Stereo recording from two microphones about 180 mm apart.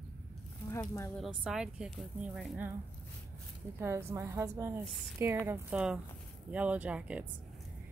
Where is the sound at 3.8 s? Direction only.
15° right (ahead or behind).